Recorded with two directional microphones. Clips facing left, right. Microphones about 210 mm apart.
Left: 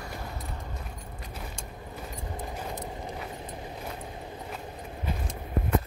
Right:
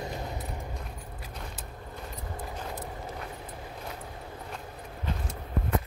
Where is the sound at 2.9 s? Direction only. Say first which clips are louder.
Left 2 dB; 20° left (ahead or behind).